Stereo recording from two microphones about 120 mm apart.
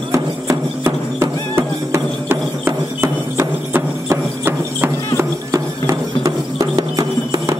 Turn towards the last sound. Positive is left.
turn(degrees=-30)  # may be behind; listen again after turning